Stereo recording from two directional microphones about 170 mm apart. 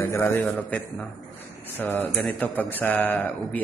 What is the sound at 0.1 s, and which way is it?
A man's voice, 10° left (ahead or behind).